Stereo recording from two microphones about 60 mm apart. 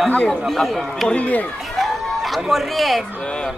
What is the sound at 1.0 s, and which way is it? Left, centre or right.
Speech, left.